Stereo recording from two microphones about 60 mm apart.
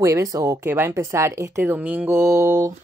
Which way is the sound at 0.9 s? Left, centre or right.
Right.